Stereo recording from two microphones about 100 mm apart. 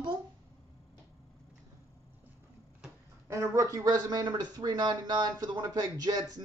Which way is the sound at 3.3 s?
30° right (ahead or behind).